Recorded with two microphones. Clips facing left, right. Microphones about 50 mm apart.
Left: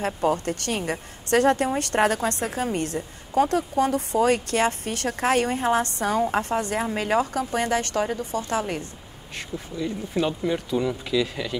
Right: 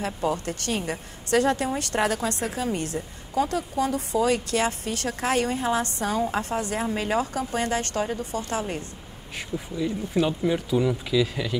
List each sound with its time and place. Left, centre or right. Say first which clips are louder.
0.0 s a woman's voice: left 3 dB; left
9.8 s speech: right 1 dB; centre